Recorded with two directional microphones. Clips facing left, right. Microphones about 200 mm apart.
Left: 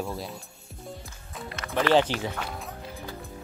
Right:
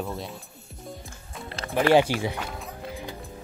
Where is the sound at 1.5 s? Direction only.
30° right (ahead or behind).